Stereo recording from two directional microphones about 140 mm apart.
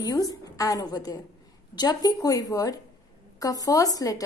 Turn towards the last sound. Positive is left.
turn(degrees=25)  # may be behind; listen again after turning